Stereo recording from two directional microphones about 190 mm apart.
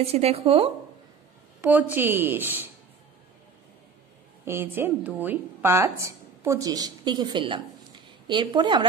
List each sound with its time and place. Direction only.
0.0 s speech: 30° right (ahead or behind)
1.6 s a woman's voice: 10° right (ahead or behind)
4.5 s a woman's voice: 10° right (ahead or behind)